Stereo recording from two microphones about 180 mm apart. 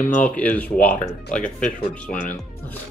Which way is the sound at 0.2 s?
10° left (ahead or behind).